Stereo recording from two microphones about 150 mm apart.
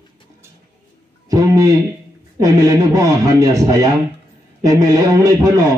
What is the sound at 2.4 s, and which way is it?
Speech, 25° right (ahead or behind).